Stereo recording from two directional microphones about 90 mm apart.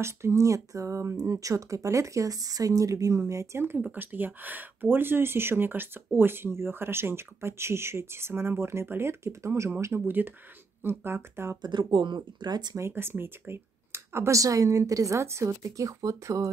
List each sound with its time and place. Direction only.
0.0 s speech: 30° right (ahead or behind)
11.6 s speech: 60° right (ahead or behind)
12.4 s speech: 50° right (ahead or behind)
12.7 s speech: 30° right (ahead or behind)